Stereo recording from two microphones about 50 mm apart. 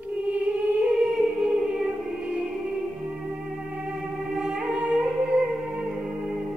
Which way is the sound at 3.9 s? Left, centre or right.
Centre.